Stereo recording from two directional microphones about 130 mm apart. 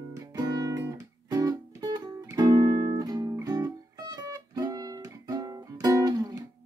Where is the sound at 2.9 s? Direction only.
30° right (ahead or behind).